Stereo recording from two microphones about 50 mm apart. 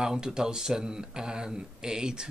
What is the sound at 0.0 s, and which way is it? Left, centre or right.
Speech, centre.